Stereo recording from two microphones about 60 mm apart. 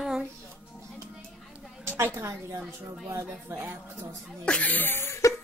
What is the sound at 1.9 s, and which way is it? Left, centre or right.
A woman's voice, right.